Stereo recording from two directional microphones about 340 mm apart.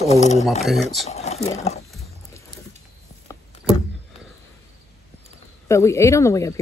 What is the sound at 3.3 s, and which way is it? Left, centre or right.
Vehicle, centre.